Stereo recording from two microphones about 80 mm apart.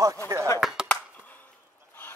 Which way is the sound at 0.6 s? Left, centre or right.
Centre.